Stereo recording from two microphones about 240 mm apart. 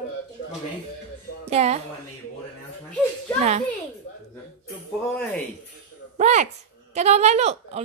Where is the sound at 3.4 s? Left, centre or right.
Right.